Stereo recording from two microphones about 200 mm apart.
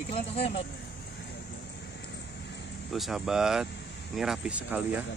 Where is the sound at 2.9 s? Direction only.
Centre (ahead or behind).